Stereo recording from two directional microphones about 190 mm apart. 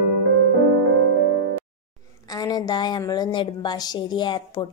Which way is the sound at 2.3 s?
20° left (ahead or behind).